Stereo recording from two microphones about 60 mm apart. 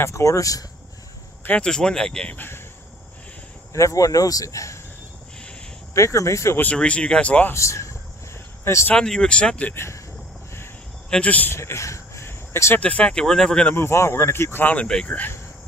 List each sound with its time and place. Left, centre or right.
0.0 s speech: left
1.5 s speech: centre
2.3 s speech: left
3.7 s speech: left
5.9 s speech: left
6.7 s speech: centre
7.5 s speech: left
8.9 s speech: centre
9.8 s speech: left
11.1 s speech: left
11.5 s a sound: left
12.7 s speech: left
13.7 s speech: left